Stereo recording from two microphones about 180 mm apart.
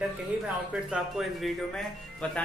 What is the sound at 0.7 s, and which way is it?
Speech, 5° right (ahead or behind).